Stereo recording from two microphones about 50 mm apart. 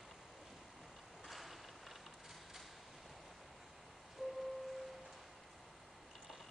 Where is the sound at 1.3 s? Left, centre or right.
Centre.